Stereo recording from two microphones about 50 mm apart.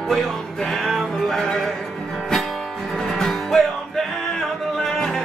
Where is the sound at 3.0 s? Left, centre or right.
Centre.